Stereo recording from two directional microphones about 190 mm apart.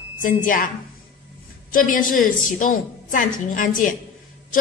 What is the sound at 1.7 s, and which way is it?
A man's voice, 45° left (ahead or behind).